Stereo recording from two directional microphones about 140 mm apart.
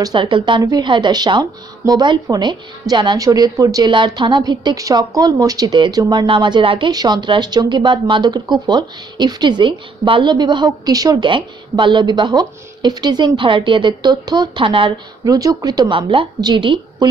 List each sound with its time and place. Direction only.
0.0 s a woman's voice: 35° right (ahead or behind)